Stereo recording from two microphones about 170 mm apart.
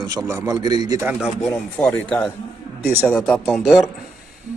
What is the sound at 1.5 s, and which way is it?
Speech, 10° left (ahead or behind).